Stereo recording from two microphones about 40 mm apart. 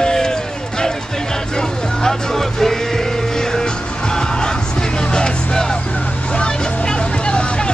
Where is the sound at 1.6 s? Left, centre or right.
Centre.